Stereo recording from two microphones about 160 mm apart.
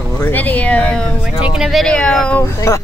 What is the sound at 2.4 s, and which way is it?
Speech, 15° left (ahead or behind).